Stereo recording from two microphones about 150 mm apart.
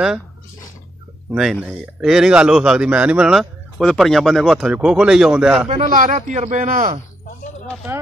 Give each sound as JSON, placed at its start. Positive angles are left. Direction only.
{"t": 1.3, "sound": "a man's voice", "side_deg": 0}
{"t": 5.7, "sound": "a man's voice", "side_deg": -55}